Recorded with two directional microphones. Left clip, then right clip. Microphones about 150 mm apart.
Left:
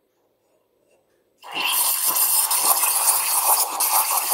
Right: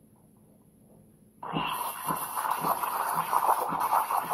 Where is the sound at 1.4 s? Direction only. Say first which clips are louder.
Left 7 dB; 15° left (ahead or behind).